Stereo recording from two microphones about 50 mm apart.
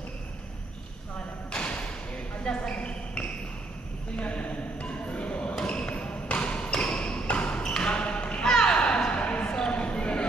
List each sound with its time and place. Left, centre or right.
1.5 s thump: left
2.4 s basketball bounce: centre